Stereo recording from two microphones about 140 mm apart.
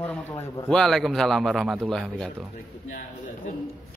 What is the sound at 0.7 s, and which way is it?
A man's voice, 5° left (ahead or behind).